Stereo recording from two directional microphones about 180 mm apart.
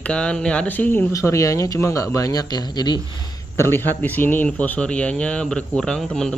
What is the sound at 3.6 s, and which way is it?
Speech, 10° left (ahead or behind).